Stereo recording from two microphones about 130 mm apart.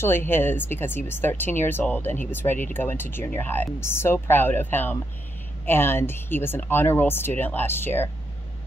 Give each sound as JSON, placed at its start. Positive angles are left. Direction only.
{"t": 0.0, "sound": "speech", "side_deg": 15}